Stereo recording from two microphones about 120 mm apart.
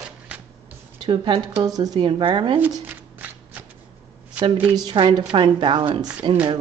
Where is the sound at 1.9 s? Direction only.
45° right (ahead or behind).